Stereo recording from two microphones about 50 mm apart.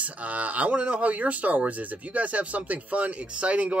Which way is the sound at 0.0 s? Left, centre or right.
Right.